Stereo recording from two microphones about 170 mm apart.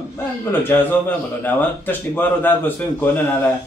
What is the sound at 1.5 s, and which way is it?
Speech, 10° left (ahead or behind).